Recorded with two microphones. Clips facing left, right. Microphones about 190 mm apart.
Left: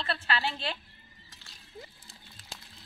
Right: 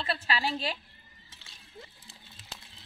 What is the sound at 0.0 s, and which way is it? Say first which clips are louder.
Speech: even; 10° right (ahead or behind).